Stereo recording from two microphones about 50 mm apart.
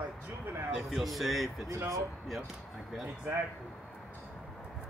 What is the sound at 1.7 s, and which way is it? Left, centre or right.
Speech, right.